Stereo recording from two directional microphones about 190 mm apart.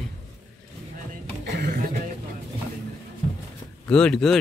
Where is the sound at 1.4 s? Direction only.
55° right (ahead or behind).